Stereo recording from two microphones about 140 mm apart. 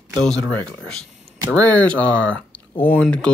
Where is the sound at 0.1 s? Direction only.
5° left (ahead or behind).